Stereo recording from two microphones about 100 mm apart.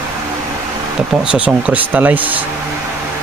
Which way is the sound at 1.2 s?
10° right (ahead or behind).